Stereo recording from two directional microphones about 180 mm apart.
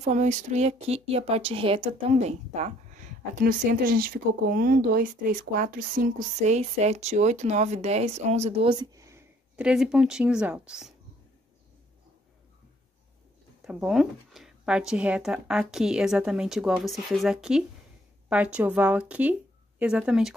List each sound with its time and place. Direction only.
0.0 s speech: 40° right (ahead or behind)
8.7 s a sound: 15° right (ahead or behind)
9.6 s speech: 5° right (ahead or behind)
13.7 s speech: 5° right (ahead or behind)